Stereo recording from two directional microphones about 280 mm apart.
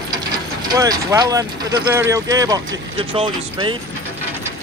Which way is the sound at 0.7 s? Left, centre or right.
Centre.